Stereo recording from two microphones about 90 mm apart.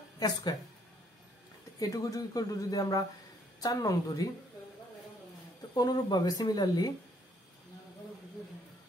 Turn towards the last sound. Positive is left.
turn(degrees=45)  # may be behind; listen again after turning